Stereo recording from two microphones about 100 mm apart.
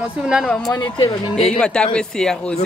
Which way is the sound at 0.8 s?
50° left (ahead or behind).